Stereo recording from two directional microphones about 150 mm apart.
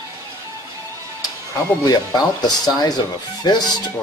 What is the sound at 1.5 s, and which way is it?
Speech, 25° left (ahead or behind).